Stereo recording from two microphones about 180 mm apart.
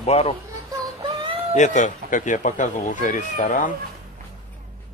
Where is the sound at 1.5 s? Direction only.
45° left (ahead or behind).